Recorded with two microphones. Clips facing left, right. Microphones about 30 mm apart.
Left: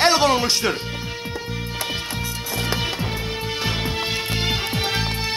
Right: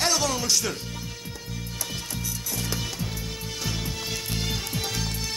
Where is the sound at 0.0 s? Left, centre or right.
Left.